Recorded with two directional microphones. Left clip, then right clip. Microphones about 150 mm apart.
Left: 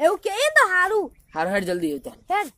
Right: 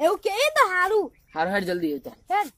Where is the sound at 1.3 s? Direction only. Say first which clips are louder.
Left 3 dB; 20° left (ahead or behind).